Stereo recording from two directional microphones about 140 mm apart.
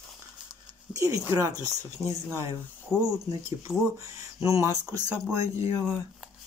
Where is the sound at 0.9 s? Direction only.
25° right (ahead or behind).